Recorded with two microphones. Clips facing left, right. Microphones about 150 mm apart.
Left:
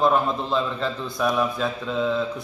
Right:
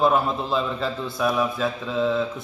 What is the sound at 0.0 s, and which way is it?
A man's voice, 5° right (ahead or behind).